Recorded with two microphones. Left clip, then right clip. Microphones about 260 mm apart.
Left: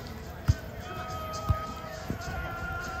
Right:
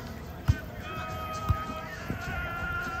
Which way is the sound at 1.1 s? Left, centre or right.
Centre.